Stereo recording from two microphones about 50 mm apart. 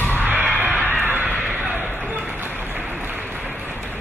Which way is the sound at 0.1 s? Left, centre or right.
Right.